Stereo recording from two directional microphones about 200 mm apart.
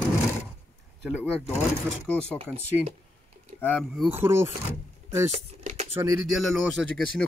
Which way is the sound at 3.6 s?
5° left (ahead or behind).